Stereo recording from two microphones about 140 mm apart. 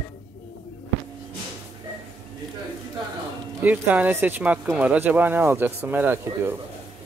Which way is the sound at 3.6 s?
10° right (ahead or behind).